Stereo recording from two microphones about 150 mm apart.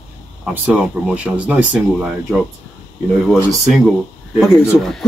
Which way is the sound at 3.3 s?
Centre (ahead or behind).